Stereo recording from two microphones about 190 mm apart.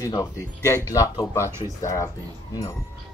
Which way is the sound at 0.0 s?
20° left (ahead or behind).